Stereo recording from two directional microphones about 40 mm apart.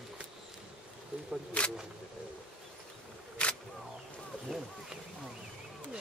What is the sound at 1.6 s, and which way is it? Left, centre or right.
Speech, left.